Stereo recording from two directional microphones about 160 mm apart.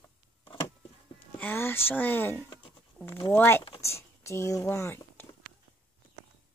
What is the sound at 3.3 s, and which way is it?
Speech, 15° left (ahead or behind).